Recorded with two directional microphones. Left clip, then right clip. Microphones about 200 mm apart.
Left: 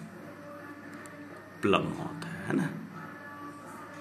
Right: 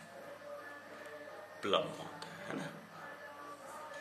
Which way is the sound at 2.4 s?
25° left (ahead or behind).